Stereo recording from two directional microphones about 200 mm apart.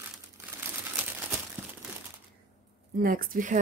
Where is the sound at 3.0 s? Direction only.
45° right (ahead or behind).